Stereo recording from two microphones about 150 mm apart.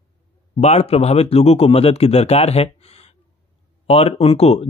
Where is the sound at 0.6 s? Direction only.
45° left (ahead or behind).